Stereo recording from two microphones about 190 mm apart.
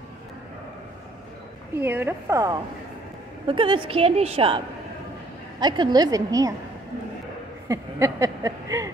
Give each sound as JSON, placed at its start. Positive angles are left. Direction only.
{"t": 1.8, "sound": "a woman's voice", "side_deg": -10}
{"t": 3.4, "sound": "a woman's voice", "side_deg": -25}
{"t": 7.6, "sound": "a sound", "side_deg": -15}